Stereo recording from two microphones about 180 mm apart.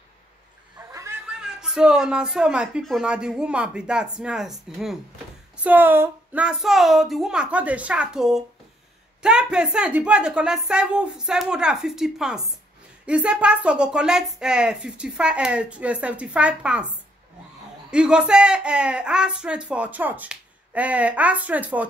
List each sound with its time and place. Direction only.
0.7 s snicker: 15° right (ahead or behind)
1.4 s speech: 5° right (ahead or behind)
17.9 s speech: 5° right (ahead or behind)